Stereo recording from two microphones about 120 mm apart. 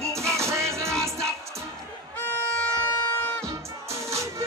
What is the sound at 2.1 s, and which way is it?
Music, 15° left (ahead or behind).